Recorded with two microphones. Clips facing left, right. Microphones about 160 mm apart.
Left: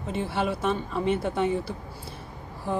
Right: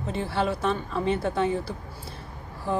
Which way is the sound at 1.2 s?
25° left (ahead or behind).